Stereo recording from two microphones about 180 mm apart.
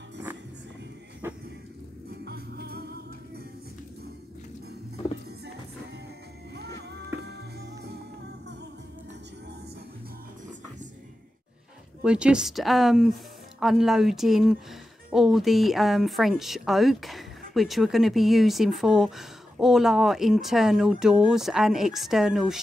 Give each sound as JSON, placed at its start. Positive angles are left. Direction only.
{"t": 1.2, "sound": "a sound", "side_deg": -15}
{"t": 2.2, "sound": "music", "side_deg": -60}
{"t": 7.2, "sound": "music", "side_deg": -65}
{"t": 12.0, "sound": "speech", "side_deg": -5}